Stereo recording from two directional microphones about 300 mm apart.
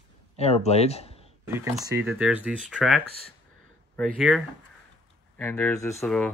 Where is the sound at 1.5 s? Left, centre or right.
Centre.